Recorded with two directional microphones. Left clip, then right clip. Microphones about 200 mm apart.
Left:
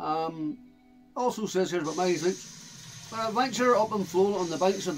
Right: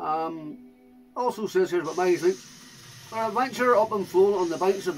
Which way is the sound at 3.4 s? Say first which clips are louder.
Right 2 dB; 15° left (ahead or behind).